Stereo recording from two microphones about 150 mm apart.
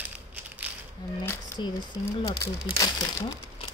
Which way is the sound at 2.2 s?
20° left (ahead or behind).